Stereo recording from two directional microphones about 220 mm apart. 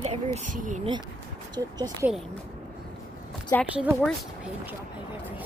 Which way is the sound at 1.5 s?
15° right (ahead or behind).